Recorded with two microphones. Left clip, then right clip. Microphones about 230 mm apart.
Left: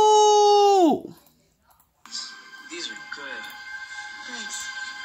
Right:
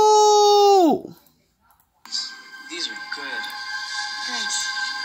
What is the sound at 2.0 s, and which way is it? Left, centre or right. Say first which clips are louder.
Music: right 6 dB; right.